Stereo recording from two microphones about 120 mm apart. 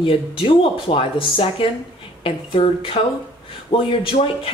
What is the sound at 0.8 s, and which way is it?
Speech, 50° left (ahead or behind).